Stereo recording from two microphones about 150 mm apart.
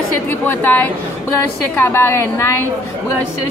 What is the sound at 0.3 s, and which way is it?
Speech, 15° left (ahead or behind).